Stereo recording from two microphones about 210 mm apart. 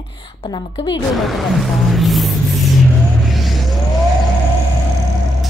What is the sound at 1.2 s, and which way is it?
Speech, centre (ahead or behind).